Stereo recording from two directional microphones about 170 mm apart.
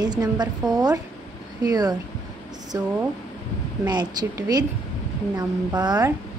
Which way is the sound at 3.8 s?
25° right (ahead or behind).